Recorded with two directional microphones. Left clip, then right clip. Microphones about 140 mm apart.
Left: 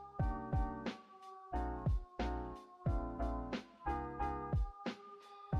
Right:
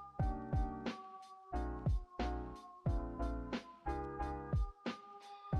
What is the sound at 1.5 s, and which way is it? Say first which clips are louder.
Music: left 2 dB; 15° left (ahead or behind).